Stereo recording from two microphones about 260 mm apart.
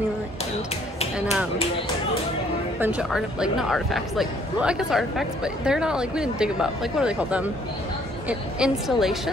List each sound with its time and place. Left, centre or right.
1.2 s speech: centre
2.8 s speech: centre